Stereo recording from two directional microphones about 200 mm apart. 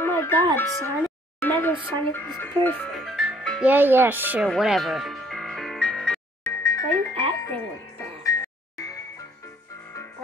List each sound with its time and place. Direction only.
0.0 s music: 10° left (ahead or behind)
0.6 s speech: 10° left (ahead or behind); by 4.5 s 10° right (ahead or behind)
4.5 s music: centre (ahead or behind)
6.6 s music: 15° left (ahead or behind)